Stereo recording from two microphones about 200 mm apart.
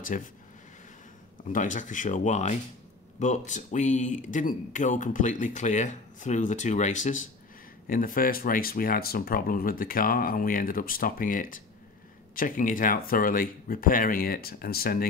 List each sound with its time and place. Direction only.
0.1 s speech: 40° left (ahead or behind)
1.5 s speech: 40° left (ahead or behind)